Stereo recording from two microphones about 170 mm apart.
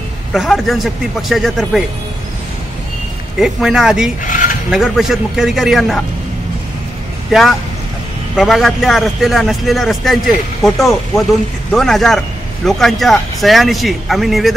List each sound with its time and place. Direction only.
0.3 s a man's voice: centre (ahead or behind)
3.3 s a man's voice: 5° right (ahead or behind)
4.2 s cutlery: 50° left (ahead or behind)
4.6 s a man's voice: centre (ahead or behind)
7.2 s a man's voice: centre (ahead or behind)